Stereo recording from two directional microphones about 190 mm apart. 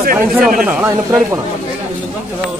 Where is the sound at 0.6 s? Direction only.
5° right (ahead or behind).